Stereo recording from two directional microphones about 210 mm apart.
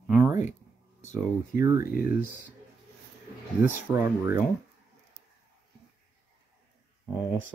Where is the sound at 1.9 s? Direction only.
45° left (ahead or behind).